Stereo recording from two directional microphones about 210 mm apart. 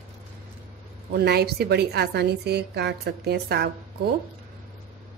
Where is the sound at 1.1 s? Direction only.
50° right (ahead or behind).